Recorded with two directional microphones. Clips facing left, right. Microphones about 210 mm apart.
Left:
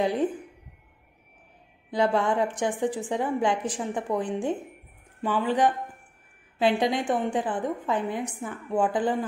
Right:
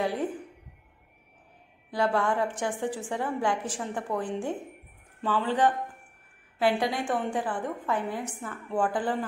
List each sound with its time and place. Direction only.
0.0 s a woman's voice: 20° left (ahead or behind)
1.9 s a woman's voice: 20° left (ahead or behind)
6.8 s a woman's voice: 20° left (ahead or behind)